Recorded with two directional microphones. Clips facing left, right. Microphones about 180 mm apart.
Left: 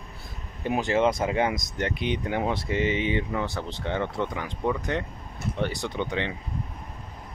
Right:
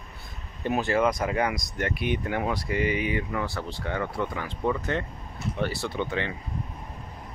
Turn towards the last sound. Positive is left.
turn(degrees=20)  # may be behind; listen again after turning